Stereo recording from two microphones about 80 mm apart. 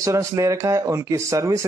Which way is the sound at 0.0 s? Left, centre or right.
Right.